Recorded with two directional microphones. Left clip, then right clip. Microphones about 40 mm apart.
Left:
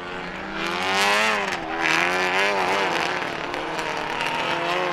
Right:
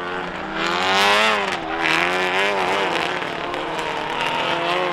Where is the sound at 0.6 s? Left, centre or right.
Centre.